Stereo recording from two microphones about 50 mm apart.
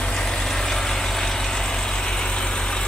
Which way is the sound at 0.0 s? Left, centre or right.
Centre.